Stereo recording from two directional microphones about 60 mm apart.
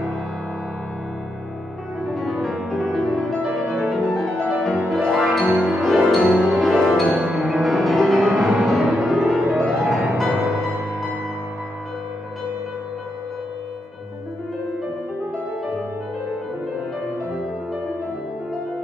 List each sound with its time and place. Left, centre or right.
2.0 s music: centre
3.6 s music: right
3.9 s music: centre
7.2 s music: centre